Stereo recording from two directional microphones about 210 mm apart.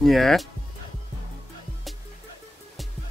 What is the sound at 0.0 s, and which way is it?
Speech, centre (ahead or behind).